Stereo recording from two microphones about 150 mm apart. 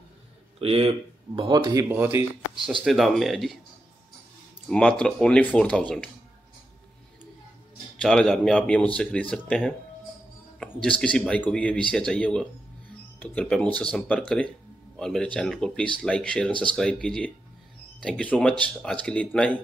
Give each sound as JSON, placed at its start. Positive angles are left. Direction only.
{"t": 0.6, "sound": "speech", "side_deg": -40}
{"t": 1.9, "sound": "speech", "side_deg": -15}
{"t": 2.8, "sound": "speech", "side_deg": 0}
{"t": 4.6, "sound": "speech", "side_deg": 5}
{"t": 8.0, "sound": "speech", "side_deg": 5}
{"t": 10.8, "sound": "speech", "side_deg": 5}